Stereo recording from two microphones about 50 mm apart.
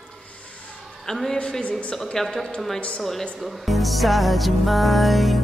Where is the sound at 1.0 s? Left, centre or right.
Centre.